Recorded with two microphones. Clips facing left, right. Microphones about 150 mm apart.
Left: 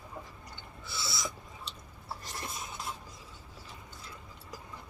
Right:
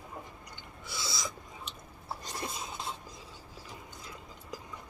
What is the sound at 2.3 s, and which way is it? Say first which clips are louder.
Cutlery: right 3 dB; 20° right (ahead or behind).